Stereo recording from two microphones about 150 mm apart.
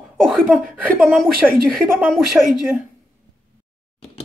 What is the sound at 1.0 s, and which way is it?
Speech, centre (ahead or behind).